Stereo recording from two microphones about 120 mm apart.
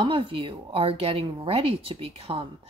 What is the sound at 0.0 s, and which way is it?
Speech, 50° right (ahead or behind).